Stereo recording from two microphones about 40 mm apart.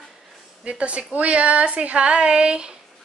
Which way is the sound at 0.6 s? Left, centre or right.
Right.